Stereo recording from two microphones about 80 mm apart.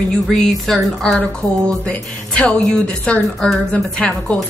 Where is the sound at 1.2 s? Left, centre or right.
Centre.